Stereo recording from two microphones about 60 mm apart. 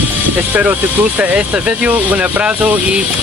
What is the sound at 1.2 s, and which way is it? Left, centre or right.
Speech, right.